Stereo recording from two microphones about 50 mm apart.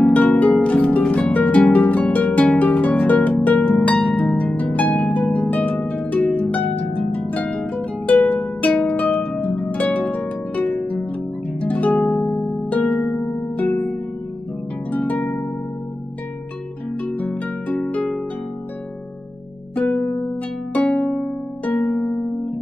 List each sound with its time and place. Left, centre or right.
0.0 s harp: left
11.6 s harp: left
17.0 s harp: left
19.7 s music: left
20.7 s harp: left